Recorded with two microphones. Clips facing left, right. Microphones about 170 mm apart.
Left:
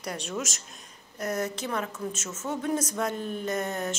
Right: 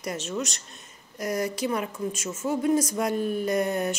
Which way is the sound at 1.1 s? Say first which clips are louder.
Right 2 dB; 10° right (ahead or behind).